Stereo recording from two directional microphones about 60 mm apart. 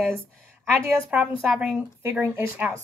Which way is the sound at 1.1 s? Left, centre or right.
Centre.